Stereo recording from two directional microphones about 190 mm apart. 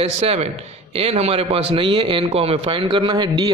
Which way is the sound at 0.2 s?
35° right (ahead or behind).